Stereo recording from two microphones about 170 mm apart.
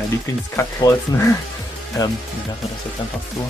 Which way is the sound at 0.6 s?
20° left (ahead or behind).